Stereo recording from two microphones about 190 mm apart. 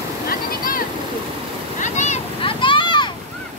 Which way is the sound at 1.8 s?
40° left (ahead or behind).